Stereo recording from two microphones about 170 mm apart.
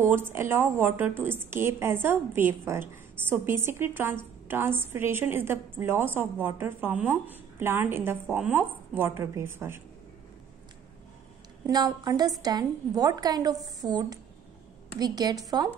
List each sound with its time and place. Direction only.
0.0 s a woman's voice: 15° right (ahead or behind)
11.6 s a woman's voice: 25° right (ahead or behind)